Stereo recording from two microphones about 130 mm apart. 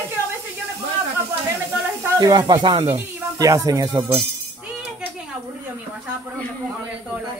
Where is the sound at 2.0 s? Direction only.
30° right (ahead or behind).